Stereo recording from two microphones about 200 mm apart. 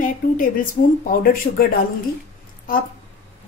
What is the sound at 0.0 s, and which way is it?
A woman's voice, 45° left (ahead or behind).